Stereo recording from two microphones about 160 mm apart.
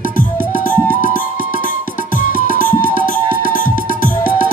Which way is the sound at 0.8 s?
55° left (ahead or behind).